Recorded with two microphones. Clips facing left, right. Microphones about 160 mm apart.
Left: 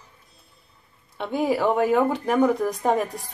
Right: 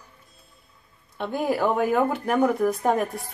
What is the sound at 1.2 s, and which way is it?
Speech, 5° left (ahead or behind).